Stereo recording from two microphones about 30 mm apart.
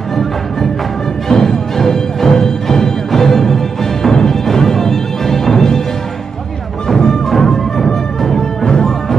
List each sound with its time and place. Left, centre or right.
1.3 s music: centre
7.2 s music: centre